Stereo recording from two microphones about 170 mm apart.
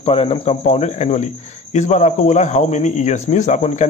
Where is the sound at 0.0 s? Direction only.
35° left (ahead or behind).